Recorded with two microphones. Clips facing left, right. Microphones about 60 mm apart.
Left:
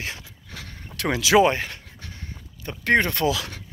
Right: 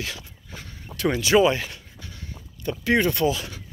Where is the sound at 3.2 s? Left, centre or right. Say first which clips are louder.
Even; left.